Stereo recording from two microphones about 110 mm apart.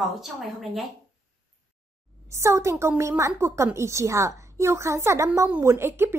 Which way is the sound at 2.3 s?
25° right (ahead or behind).